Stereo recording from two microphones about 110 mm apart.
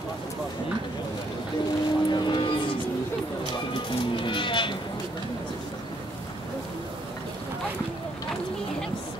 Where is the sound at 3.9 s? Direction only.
50° left (ahead or behind).